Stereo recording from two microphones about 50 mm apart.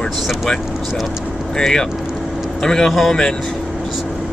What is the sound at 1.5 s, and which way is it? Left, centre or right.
Speech, centre.